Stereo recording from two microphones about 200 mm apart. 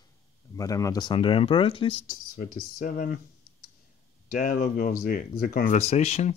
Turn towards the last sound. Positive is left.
turn(degrees=35)  # may be behind; listen again after turning